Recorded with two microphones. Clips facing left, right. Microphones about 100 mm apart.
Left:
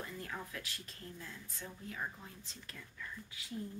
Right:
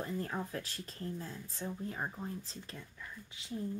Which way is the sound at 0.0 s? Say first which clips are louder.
Right 7 dB; 35° right (ahead or behind).